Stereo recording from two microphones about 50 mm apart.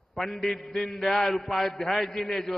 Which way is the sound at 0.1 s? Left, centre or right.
Centre.